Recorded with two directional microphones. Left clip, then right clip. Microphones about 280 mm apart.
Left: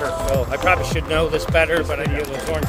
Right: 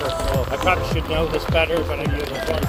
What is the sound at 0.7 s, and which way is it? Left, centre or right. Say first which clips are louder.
Speech: left 2 dB; left.